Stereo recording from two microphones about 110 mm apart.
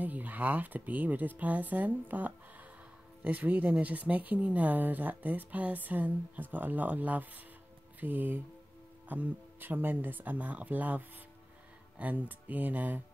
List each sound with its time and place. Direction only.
0.0 s speech: 15° right (ahead or behind)